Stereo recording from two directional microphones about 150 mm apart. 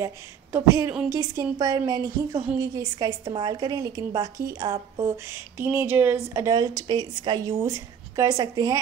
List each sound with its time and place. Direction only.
0.0 s speech: 20° right (ahead or behind)